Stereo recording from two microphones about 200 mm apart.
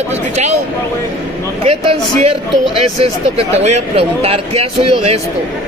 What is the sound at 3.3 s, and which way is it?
Speech, 35° right (ahead or behind).